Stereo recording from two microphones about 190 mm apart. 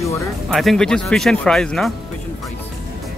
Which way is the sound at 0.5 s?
Centre (ahead or behind).